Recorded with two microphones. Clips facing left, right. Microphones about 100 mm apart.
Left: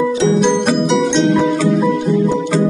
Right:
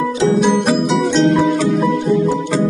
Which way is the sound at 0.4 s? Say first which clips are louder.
Even; 5° right (ahead or behind).